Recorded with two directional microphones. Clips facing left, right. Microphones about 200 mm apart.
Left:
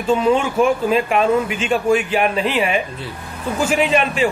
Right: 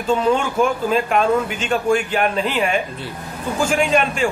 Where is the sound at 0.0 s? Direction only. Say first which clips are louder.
Left 2 dB; 5° left (ahead or behind).